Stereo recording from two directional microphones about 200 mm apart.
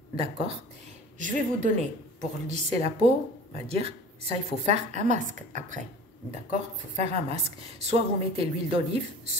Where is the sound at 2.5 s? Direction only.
30° right (ahead or behind).